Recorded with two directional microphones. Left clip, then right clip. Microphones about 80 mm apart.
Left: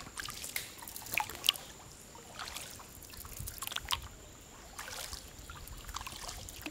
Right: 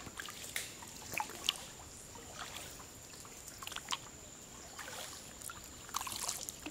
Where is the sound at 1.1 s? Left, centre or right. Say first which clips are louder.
Left 5 dB; left.